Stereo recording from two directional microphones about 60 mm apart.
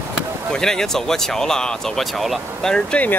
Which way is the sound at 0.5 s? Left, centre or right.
Centre.